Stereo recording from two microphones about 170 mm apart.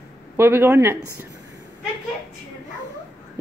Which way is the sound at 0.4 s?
15° right (ahead or behind).